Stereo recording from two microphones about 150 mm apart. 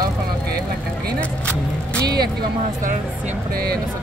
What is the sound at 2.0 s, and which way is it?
Speech, 90° right.